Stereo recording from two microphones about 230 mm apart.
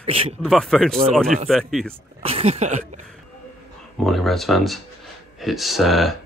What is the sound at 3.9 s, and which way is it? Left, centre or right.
Speech, centre.